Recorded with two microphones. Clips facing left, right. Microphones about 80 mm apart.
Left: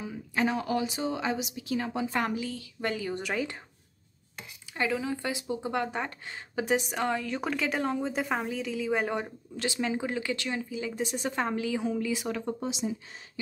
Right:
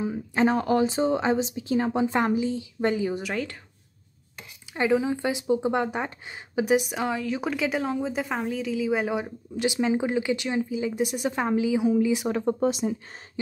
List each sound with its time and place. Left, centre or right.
0.0 s a woman's voice: right
3.2 s a woman's voice: centre
4.7 s a woman's voice: right; by 9.3 s centre
9.6 s speech: centre
12.5 s speech: right